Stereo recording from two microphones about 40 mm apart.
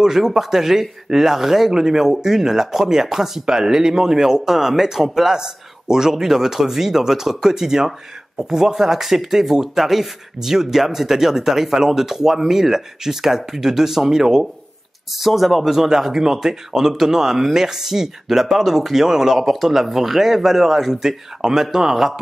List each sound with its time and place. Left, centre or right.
0.0 s a man's voice: centre